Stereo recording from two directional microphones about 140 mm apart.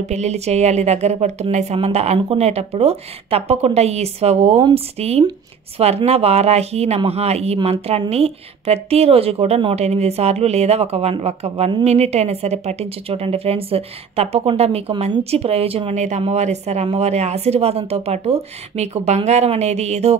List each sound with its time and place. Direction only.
0.0 s a woman's voice: 50° right (ahead or behind)